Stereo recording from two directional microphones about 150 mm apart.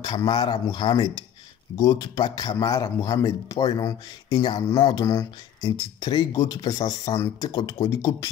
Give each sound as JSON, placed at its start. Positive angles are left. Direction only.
{"t": 0.0, "sound": "speech", "side_deg": 30}